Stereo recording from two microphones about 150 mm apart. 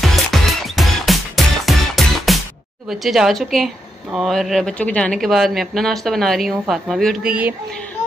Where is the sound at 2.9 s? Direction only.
Centre (ahead or behind).